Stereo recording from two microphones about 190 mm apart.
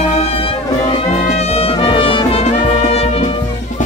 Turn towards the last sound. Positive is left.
turn(degrees=30)  # may be behind; listen again after turning